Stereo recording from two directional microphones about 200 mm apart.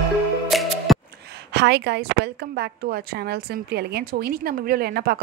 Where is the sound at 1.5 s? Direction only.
60° right (ahead or behind).